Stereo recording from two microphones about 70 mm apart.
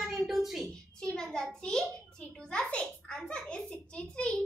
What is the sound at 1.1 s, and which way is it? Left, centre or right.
A child's voice, centre.